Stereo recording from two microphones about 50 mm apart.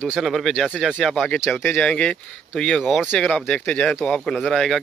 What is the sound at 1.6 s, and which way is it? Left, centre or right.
Speech, left.